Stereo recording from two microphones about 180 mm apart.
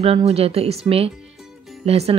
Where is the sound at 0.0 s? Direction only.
35° right (ahead or behind).